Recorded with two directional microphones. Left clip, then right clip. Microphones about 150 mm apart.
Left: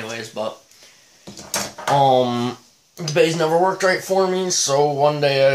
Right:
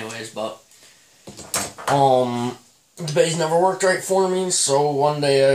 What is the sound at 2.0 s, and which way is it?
Speech, 30° left (ahead or behind).